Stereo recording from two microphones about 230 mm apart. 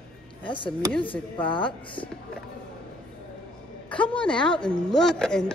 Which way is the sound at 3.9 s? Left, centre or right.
Centre.